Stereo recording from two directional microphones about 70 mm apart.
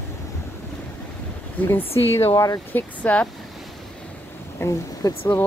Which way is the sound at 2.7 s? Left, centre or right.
Centre.